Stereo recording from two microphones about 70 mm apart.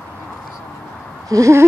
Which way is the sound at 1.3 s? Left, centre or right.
Right.